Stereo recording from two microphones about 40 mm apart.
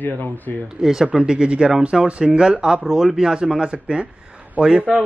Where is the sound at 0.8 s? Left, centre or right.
Centre.